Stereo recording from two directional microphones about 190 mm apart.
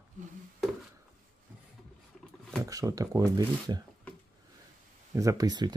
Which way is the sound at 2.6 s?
20° right (ahead or behind).